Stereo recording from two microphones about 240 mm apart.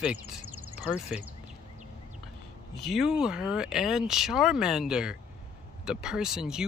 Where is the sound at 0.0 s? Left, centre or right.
Centre.